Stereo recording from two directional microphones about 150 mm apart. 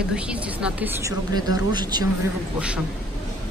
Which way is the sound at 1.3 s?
30° right (ahead or behind).